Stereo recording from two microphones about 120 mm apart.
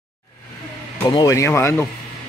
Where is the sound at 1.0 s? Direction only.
30° left (ahead or behind).